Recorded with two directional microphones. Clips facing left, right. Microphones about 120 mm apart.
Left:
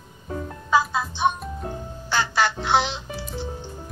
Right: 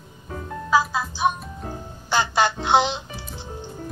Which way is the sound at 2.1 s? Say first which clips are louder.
Right 2 dB; 20° right (ahead or behind).